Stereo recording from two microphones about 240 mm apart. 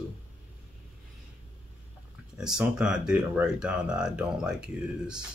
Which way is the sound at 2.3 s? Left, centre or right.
Centre.